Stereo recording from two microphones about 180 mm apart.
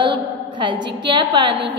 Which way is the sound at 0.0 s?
25° right (ahead or behind).